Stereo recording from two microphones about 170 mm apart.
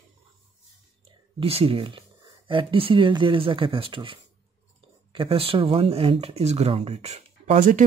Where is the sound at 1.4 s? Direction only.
35° right (ahead or behind).